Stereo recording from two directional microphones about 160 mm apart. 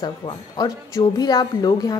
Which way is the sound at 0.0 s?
25° left (ahead or behind).